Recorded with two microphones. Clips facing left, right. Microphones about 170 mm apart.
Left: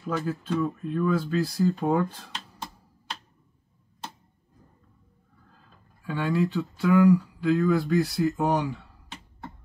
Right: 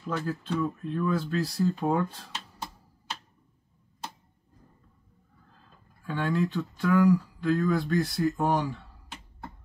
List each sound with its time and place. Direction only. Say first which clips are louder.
0.0 s speech: left 2 dB; 5° left (ahead or behind)
6.0 s speech: left 2 dB; 5° left (ahead or behind)